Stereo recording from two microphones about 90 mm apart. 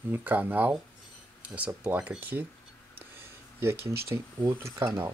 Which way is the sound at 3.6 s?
30° right (ahead or behind).